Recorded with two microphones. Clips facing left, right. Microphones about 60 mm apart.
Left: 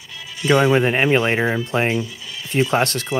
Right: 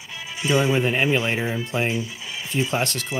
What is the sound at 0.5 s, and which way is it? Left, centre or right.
Speech, left.